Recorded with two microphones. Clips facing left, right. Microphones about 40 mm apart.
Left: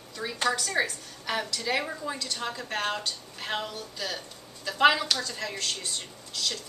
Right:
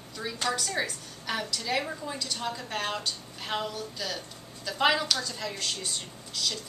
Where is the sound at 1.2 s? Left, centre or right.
Centre.